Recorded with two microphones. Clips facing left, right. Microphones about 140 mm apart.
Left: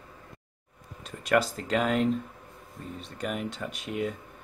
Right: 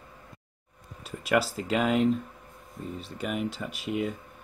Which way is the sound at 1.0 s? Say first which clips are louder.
Left 1 dB; 5° right (ahead or behind).